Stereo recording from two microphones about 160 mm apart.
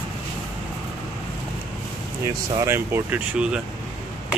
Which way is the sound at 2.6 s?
15° right (ahead or behind).